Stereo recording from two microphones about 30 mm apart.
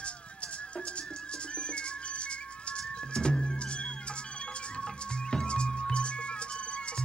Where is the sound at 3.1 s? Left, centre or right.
Left.